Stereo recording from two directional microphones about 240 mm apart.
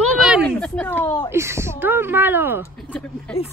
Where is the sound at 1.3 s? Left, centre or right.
Centre.